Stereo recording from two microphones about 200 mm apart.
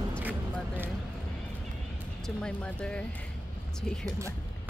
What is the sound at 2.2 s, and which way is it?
Speech, 5° left (ahead or behind).